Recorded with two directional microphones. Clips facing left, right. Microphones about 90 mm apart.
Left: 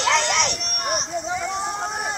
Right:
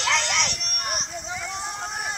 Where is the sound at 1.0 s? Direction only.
25° left (ahead or behind).